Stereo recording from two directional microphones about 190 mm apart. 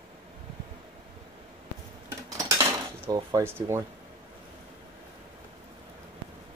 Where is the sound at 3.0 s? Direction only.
20° right (ahead or behind).